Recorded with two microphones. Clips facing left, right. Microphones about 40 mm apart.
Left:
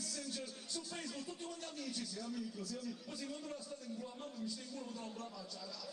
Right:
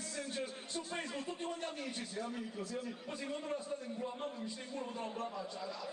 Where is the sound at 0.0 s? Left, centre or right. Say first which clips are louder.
Right 4 dB; right.